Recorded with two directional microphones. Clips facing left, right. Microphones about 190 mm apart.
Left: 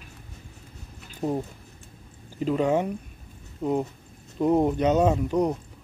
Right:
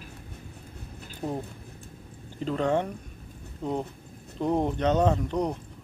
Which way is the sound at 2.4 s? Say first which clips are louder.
Left 3 dB; 10° left (ahead or behind).